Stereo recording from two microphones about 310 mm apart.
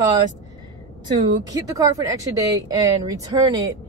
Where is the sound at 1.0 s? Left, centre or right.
Centre.